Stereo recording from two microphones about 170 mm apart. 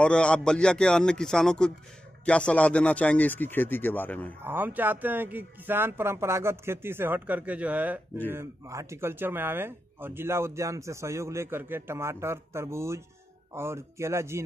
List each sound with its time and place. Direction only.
0.0 s speech: 5° left (ahead or behind)
4.4 s speech: 10° right (ahead or behind)